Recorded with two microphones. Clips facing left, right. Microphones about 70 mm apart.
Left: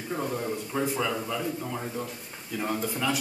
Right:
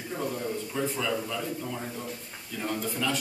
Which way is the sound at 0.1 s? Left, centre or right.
Centre.